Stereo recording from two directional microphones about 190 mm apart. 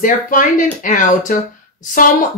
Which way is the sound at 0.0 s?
45° left (ahead or behind).